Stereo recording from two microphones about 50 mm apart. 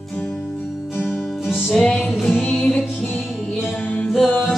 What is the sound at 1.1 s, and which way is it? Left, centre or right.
Music, centre.